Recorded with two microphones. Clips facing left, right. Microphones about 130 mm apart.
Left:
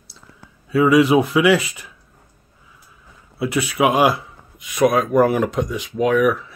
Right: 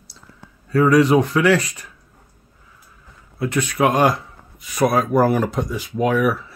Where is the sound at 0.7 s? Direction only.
5° left (ahead or behind).